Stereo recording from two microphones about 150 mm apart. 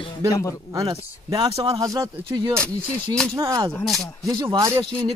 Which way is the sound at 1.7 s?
25° right (ahead or behind).